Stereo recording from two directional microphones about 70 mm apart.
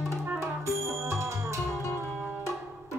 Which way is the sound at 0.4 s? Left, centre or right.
Right.